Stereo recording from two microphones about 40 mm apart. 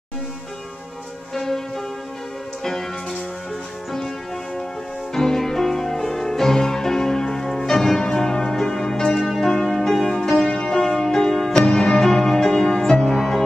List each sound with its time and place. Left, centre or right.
1.3 s church bell: centre
2.6 s music: centre
5.1 s music: centre
10.5 s music: centre